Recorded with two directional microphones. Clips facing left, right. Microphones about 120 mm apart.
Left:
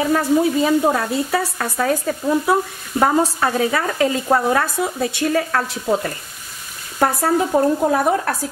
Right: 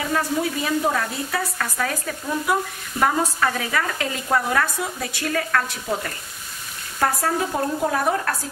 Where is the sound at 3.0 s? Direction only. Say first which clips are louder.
Left 4 dB; 30° left (ahead or behind).